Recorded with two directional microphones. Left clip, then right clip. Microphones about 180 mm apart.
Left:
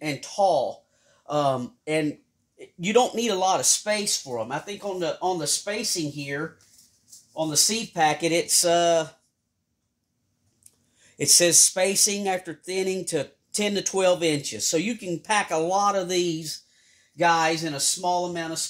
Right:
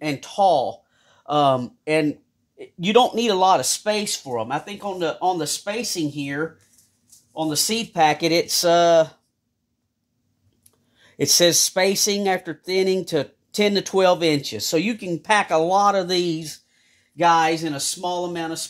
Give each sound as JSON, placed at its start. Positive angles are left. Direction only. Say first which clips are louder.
{"t": 0.0, "sound": "speech", "louder": "right 4 dB", "side_deg": -20}
{"t": 2.5, "sound": "a sound", "louder": "right 4 dB", "side_deg": -20}
{"t": 3.1, "sound": "speech", "louder": "right 6 dB", "side_deg": -20}
{"t": 11.0, "sound": "speech", "louder": "right 3 dB", "side_deg": -25}